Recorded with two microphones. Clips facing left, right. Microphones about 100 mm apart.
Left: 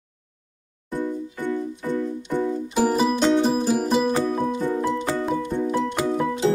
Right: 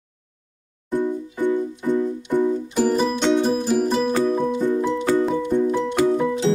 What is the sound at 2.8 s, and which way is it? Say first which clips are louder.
Music: even; 5° left (ahead or behind).